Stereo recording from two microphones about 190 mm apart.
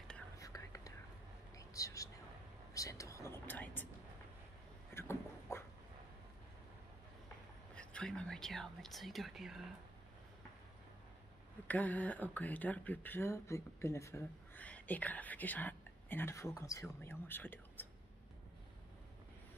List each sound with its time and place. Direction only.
0.4 s whispering: 15° left (ahead or behind)
2.7 s vehicle: 15° left (ahead or behind)
4.9 s a sound: 15° left (ahead or behind)
7.7 s speech: 5° left (ahead or behind)
11.6 s speech: 10° left (ahead or behind)